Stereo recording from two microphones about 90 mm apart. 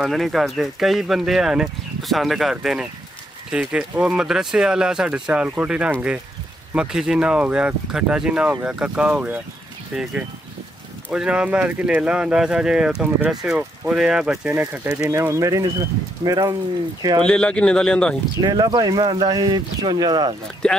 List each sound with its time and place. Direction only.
0.0 s speech: centre (ahead or behind)
14.5 s speech: 20° right (ahead or behind); by 16.5 s 45° right (ahead or behind)
17.2 s speech: 10° left (ahead or behind)
18.4 s speech: 50° right (ahead or behind)
20.6 s speech: 10° left (ahead or behind)